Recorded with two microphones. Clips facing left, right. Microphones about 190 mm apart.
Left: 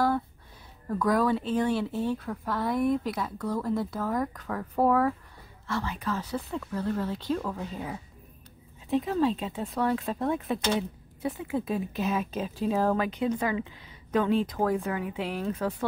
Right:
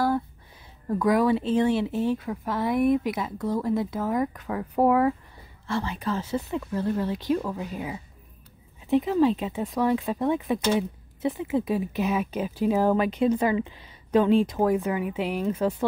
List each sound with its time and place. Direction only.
0.8 s speech: 20° right (ahead or behind)
5.7 s speech: 30° right (ahead or behind)
6.5 s speech: 15° right (ahead or behind)
11.2 s speech: 20° right (ahead or behind)
13.2 s a woman's voice: 25° right (ahead or behind)